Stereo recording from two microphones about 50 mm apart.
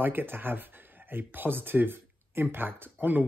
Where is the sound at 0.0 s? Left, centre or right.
Right.